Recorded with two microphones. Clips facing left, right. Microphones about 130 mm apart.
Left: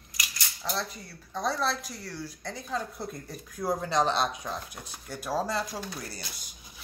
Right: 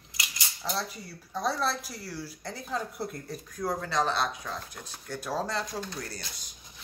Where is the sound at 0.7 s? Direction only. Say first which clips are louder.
Even; 5° right (ahead or behind).